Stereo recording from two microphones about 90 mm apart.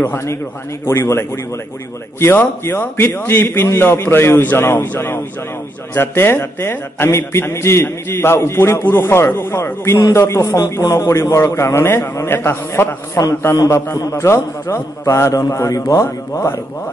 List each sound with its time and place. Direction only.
0.0 s a man's voice: 30° left (ahead or behind)